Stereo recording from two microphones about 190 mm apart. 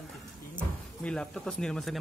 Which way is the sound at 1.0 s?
5° left (ahead or behind).